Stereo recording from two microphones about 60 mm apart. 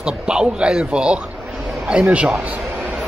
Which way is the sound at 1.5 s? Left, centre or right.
Centre.